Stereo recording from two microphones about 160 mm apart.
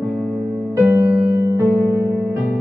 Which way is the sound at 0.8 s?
20° right (ahead or behind).